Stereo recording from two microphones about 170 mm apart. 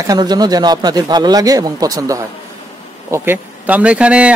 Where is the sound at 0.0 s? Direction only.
20° right (ahead or behind).